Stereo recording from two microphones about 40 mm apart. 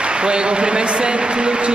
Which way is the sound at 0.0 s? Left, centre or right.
Right.